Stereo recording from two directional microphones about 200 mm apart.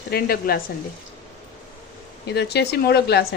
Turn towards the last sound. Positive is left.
turn(degrees=55)  # may be behind; listen again after turning